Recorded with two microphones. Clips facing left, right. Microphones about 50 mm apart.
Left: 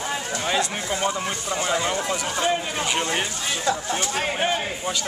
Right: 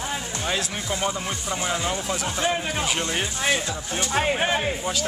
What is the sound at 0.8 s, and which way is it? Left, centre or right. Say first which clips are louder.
Speech: left 2 dB; centre.